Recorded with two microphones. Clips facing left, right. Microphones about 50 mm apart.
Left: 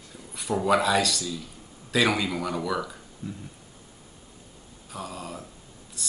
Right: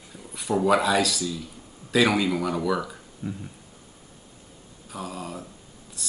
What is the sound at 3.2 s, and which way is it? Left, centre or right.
Insect, right.